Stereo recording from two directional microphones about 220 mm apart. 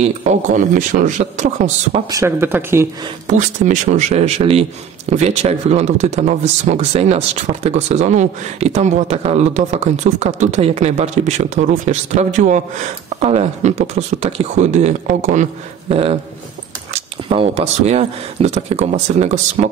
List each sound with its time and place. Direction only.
0.0 s speech: 35° right (ahead or behind)
2.0 s speech: 15° right (ahead or behind)
3.3 s speech: 35° right (ahead or behind)